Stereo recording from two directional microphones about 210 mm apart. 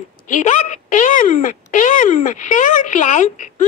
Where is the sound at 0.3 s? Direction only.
35° left (ahead or behind).